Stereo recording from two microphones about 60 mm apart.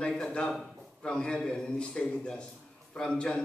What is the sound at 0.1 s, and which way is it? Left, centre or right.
A man's voice, centre.